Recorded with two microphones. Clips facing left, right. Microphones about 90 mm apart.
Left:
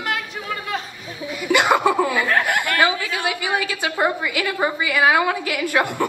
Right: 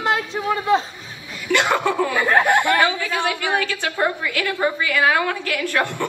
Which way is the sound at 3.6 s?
15° left (ahead or behind).